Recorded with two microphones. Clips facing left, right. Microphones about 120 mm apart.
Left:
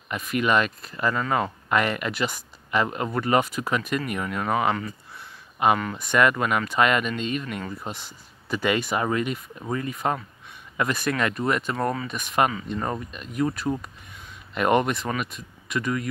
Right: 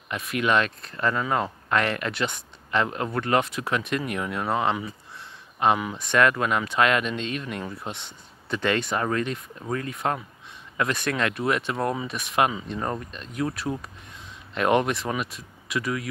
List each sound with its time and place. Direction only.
0.1 s speech: centre (ahead or behind)